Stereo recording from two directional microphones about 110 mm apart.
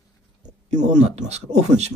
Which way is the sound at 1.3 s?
85° right.